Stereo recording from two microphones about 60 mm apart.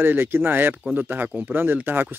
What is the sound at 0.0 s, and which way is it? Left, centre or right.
Speech, right.